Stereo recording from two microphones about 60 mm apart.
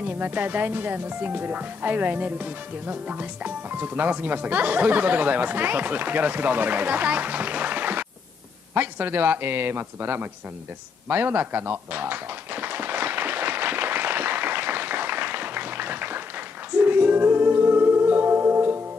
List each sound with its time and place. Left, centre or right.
0.0 s a man's voice: right
11.1 s tap: right
16.7 s music: right